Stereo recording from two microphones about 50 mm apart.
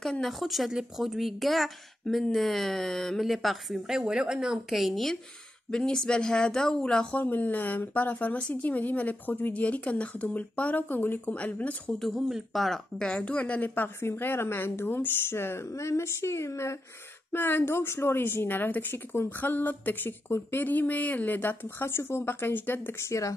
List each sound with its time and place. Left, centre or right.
0.0 s speech: centre
0.4 s a woman's voice: centre
4.0 s speech: centre
5.7 s speech: centre
7.2 s speech: left
12.0 s a woman's voice: centre
13.0 s a woman's voice: left
13.7 s a woman's voice: left
17.3 s a woman's voice: left
23.1 s speech: left